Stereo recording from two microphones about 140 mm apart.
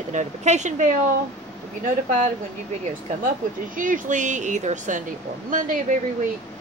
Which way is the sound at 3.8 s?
70° right (ahead or behind).